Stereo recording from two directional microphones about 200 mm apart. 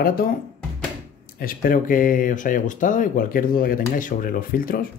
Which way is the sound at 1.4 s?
45° left (ahead or behind).